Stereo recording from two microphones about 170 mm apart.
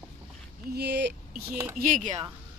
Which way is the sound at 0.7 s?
75° right (ahead or behind).